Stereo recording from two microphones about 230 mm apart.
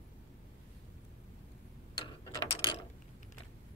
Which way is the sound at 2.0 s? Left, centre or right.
Left.